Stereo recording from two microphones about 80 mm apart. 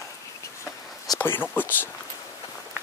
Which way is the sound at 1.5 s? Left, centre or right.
Left.